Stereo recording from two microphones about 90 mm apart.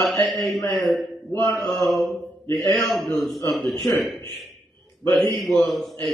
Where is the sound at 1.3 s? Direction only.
35° left (ahead or behind).